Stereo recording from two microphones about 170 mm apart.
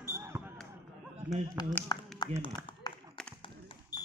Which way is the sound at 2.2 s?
25° left (ahead or behind).